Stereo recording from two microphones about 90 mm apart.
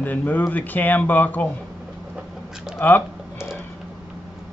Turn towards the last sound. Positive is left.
turn(degrees=20)  # may be behind; listen again after turning